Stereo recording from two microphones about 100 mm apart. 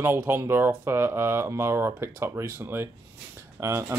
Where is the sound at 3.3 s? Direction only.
25° right (ahead or behind).